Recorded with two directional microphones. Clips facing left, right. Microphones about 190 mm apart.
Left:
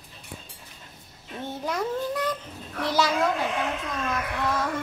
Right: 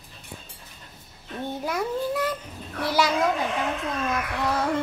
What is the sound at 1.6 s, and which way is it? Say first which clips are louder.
Speech: even; 10° right (ahead or behind).